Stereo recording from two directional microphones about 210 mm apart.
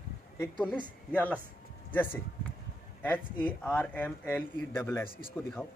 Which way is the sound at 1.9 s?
10° left (ahead or behind).